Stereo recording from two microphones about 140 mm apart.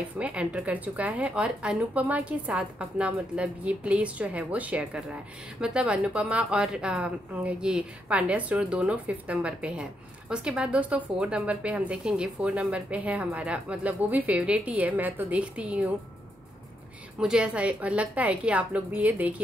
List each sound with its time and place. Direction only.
0.2 s speech: 10° right (ahead or behind)
17.2 s speech: 5° right (ahead or behind)